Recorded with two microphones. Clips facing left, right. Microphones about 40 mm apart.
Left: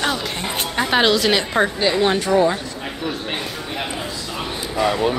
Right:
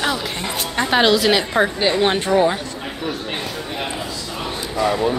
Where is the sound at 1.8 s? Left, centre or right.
Centre.